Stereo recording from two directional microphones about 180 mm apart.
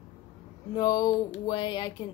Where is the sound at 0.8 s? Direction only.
20° left (ahead or behind).